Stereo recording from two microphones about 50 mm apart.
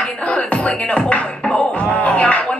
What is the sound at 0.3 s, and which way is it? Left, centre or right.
Speech, left.